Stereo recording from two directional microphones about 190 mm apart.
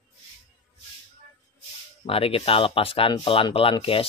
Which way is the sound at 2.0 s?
30° left (ahead or behind).